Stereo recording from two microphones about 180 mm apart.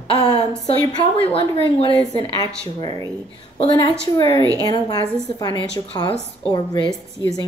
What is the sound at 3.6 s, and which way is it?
Speech, 25° left (ahead or behind).